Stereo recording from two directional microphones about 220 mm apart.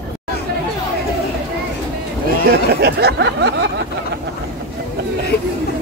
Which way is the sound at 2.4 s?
45° right (ahead or behind).